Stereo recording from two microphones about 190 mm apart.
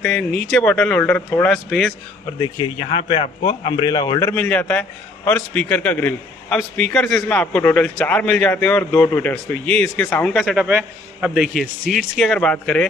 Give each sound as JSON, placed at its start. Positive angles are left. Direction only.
{"t": 0.0, "sound": "a man's voice", "side_deg": 5}
{"t": 2.4, "sound": "speech", "side_deg": 25}
{"t": 4.3, "sound": "a man's voice", "side_deg": 10}
{"t": 10.3, "sound": "a man's voice", "side_deg": -5}